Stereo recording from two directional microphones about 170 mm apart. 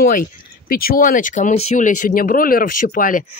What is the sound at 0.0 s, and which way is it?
Speech, 55° left (ahead or behind).